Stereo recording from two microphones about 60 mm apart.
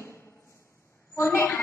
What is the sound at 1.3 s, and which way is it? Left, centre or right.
Speech, left.